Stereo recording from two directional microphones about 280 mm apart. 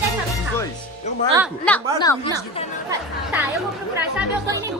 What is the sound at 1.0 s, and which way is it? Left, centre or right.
Music, left.